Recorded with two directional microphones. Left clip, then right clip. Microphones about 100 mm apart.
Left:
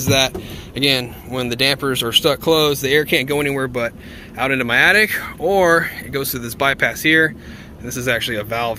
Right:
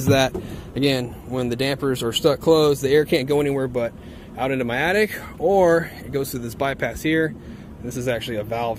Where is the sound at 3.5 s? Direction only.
20° right (ahead or behind).